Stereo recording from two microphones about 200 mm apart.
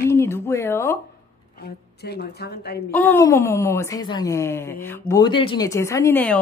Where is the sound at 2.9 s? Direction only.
10° left (ahead or behind).